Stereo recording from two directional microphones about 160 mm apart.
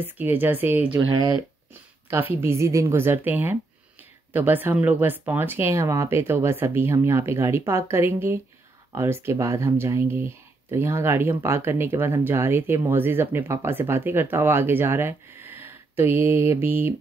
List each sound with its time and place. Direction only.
0.0 s speech: 10° right (ahead or behind)
0.8 s speech: 30° right (ahead or behind)
1.7 s speech: 15° right (ahead or behind)